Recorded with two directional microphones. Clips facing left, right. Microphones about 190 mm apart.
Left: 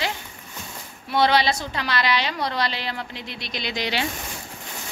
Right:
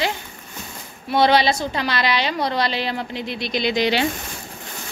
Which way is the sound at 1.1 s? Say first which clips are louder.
Right 3 dB; 25° right (ahead or behind).